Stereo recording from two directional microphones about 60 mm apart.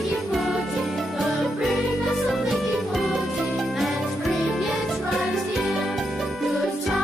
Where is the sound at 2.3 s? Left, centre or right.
Centre.